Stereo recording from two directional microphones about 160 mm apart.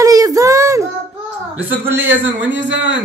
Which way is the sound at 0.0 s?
20° right (ahead or behind).